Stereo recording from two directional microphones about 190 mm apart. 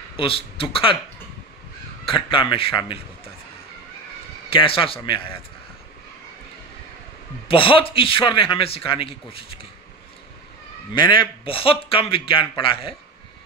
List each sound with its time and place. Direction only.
0.1 s a man's voice: 30° left (ahead or behind)
2.0 s a man's voice: 25° left (ahead or behind)
4.5 s a man's voice: 30° left (ahead or behind)
7.4 s a man's voice: 30° left (ahead or behind)
11.0 s a man's voice: 25° left (ahead or behind)